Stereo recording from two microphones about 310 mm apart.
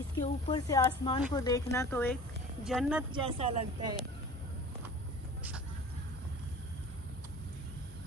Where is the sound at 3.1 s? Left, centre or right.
Centre.